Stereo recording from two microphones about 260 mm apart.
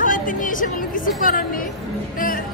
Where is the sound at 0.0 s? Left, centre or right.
Left.